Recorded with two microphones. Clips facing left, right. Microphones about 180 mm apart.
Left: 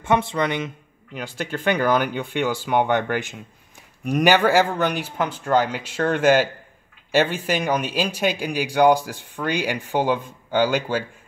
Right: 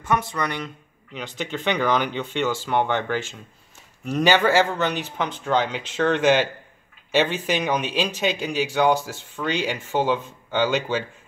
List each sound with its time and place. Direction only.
0.0 s speech: 25° left (ahead or behind)
1.1 s speech: 10° left (ahead or behind)